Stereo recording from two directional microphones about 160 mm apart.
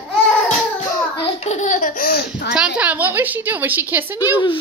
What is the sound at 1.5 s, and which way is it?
Speech, 50° left (ahead or behind).